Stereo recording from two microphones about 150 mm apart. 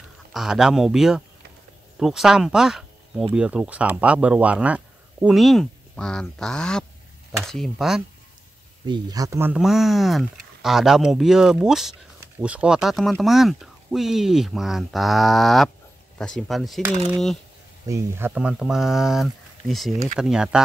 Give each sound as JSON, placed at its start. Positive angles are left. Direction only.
{"t": 0.3, "sound": "speech", "side_deg": -5}
{"t": 8.8, "sound": "speech", "side_deg": -25}
{"t": 9.5, "sound": "speech", "side_deg": -5}
{"t": 17.8, "sound": "speech", "side_deg": -20}